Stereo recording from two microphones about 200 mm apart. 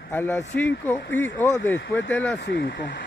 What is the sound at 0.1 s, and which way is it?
Speech, 10° left (ahead or behind).